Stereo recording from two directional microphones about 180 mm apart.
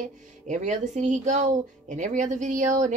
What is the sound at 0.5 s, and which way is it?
A woman's voice, 40° right (ahead or behind).